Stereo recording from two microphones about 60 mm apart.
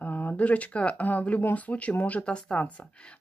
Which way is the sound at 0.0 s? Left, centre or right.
Left.